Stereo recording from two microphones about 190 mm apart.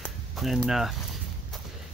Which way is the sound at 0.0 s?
Centre (ahead or behind).